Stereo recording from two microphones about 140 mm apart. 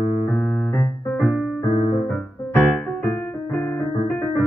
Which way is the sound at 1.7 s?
35° left (ahead or behind).